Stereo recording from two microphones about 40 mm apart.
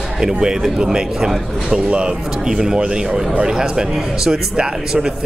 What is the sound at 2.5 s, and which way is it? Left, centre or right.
A man's voice, centre.